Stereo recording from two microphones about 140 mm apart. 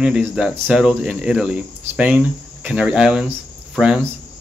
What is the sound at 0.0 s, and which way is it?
A man's voice, 5° right (ahead or behind).